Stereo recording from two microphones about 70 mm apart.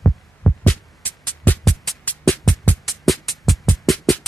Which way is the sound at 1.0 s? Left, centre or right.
Left.